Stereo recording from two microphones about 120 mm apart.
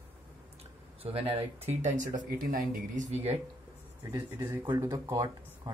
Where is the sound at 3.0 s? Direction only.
70° right (ahead or behind).